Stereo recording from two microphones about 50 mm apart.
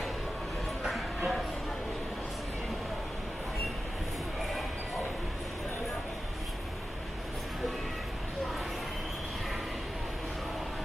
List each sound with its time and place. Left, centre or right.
0.8 s music: centre